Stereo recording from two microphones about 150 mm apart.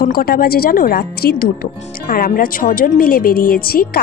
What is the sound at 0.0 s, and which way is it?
Speech, 85° left.